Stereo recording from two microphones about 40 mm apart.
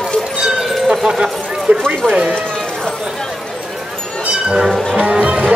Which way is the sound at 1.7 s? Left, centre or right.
Right.